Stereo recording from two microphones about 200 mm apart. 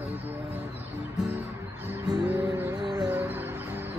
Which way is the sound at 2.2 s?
10° right (ahead or behind).